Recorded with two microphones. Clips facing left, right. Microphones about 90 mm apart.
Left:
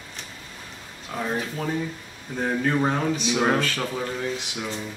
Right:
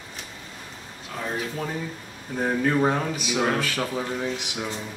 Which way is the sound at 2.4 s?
10° right (ahead or behind).